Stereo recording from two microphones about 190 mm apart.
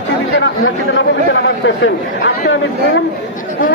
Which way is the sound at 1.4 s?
75° left (ahead or behind).